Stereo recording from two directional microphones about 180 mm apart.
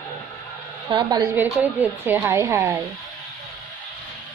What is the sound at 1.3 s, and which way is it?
A woman's voice, 10° right (ahead or behind).